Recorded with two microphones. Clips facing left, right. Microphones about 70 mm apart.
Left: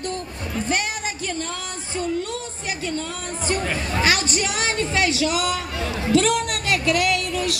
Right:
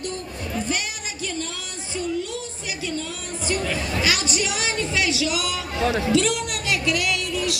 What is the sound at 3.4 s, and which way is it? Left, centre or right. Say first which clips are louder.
Chatter: left 1 dB; left.